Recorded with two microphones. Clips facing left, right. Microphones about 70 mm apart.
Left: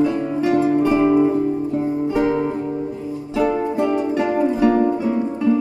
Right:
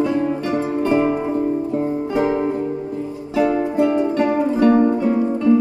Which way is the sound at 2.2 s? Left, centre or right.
Right.